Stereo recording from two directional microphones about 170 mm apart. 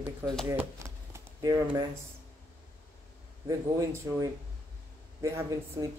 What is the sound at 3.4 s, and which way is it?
Speech, 20° right (ahead or behind).